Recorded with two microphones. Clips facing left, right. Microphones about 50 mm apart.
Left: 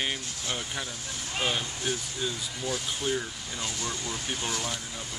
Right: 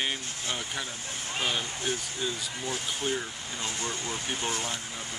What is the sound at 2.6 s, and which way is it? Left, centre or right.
Speech, right.